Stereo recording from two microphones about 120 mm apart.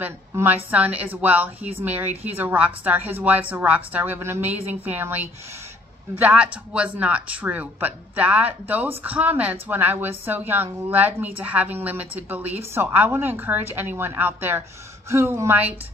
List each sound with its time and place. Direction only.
0.0 s speech: 15° right (ahead or behind)